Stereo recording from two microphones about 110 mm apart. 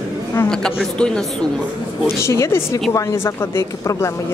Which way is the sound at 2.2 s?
25° left (ahead or behind).